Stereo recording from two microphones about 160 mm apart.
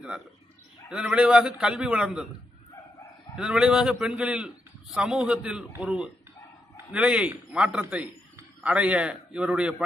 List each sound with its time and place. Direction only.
0.8 s a man's voice: 5° right (ahead or behind)
3.3 s a man's voice: 5° right (ahead or behind)